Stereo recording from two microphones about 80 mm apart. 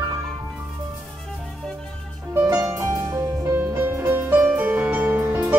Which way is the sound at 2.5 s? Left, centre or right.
Right.